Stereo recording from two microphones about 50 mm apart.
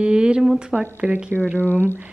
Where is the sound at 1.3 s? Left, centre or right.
Right.